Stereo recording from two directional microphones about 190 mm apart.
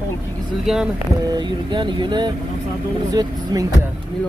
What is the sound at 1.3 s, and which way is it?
Speech, 25° right (ahead or behind).